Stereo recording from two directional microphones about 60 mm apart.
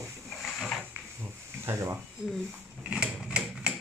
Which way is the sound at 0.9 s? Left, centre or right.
Right.